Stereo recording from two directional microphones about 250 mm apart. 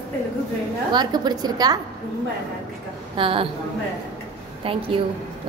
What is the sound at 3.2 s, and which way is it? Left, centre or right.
Speech, right.